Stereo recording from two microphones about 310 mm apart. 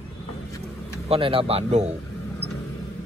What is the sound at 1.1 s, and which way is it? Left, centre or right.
Speech, centre.